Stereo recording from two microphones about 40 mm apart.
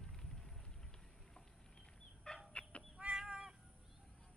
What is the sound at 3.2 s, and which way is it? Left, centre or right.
Cat, right.